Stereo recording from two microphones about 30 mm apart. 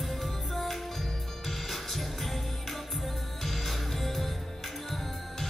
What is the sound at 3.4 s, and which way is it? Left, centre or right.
Music, centre.